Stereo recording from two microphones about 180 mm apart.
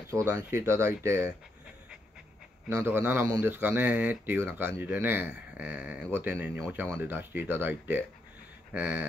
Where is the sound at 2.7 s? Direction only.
10° right (ahead or behind).